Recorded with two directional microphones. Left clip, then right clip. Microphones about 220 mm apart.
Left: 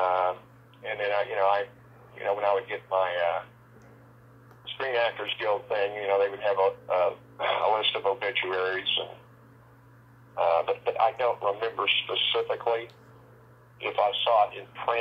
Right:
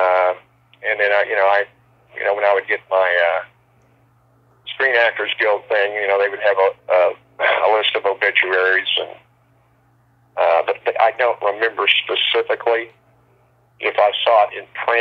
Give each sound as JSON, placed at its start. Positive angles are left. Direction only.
{"t": 0.0, "sound": "a sound", "side_deg": -25}
{"t": 0.8, "sound": "speech", "side_deg": -25}
{"t": 4.7, "sound": "speech", "side_deg": -25}
{"t": 10.3, "sound": "speech", "side_deg": -25}
{"t": 13.8, "sound": "speech", "side_deg": -25}